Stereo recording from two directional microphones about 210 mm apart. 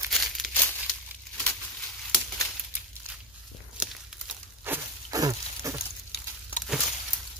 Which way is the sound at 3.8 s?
5° right (ahead or behind).